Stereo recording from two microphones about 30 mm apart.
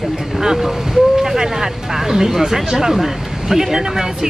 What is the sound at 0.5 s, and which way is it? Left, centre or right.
Speech, centre.